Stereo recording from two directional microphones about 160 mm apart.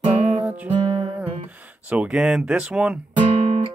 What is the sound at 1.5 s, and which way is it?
Speech, 10° right (ahead or behind).